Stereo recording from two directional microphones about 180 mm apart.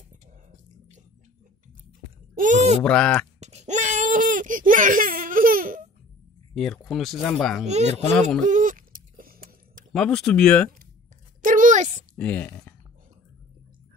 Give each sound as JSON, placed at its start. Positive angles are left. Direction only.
{"t": 2.3, "sound": "speech", "side_deg": -45}
{"t": 2.8, "sound": "speech", "side_deg": 5}
{"t": 3.3, "sound": "baby cry", "side_deg": -40}
{"t": 6.5, "sound": "speech", "side_deg": 0}
{"t": 7.6, "sound": "speech", "side_deg": -40}
{"t": 8.1, "sound": "speech", "side_deg": 5}
{"t": 8.5, "sound": "a sound", "side_deg": -45}
{"t": 9.9, "sound": "speech", "side_deg": 5}
{"t": 11.4, "sound": "a sound", "side_deg": -45}
{"t": 12.2, "sound": "speech", "side_deg": 10}